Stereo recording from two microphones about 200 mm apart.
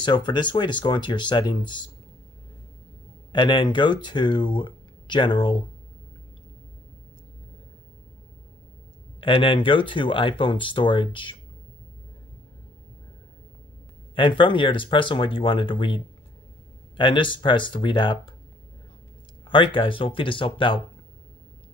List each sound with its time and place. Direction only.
0.0 s speech: 20° left (ahead or behind)
3.3 s speech: 25° left (ahead or behind)
9.2 s speech: 25° left (ahead or behind)
14.1 s speech: 25° left (ahead or behind)
19.4 s speech: 25° left (ahead or behind)